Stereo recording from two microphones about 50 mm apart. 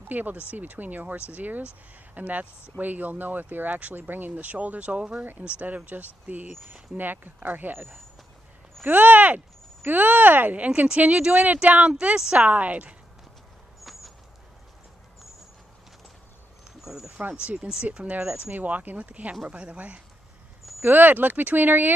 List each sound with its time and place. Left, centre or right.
0.1 s speech: right
16.8 s a sound: centre
18.1 s speech: right
20.8 s speech: right